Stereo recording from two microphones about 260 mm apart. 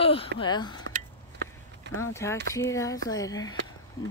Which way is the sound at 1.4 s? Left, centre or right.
Right.